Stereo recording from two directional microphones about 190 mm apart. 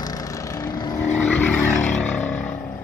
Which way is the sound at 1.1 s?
10° left (ahead or behind).